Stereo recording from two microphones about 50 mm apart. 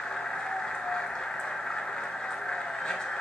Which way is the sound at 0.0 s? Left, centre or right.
Centre.